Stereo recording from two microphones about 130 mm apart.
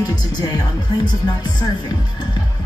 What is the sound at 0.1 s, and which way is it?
Speech, 30° left (ahead or behind).